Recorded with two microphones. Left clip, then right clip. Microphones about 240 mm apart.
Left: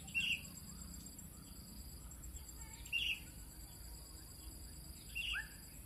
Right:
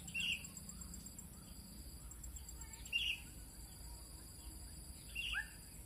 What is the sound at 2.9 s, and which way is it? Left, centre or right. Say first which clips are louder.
Bird: even; centre.